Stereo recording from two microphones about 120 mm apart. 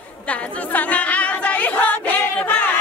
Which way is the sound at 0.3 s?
10° left (ahead or behind).